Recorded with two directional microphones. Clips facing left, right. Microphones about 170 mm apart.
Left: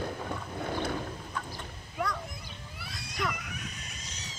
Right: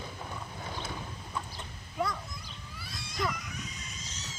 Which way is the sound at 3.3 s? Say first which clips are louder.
Even; 60° left (ahead or behind).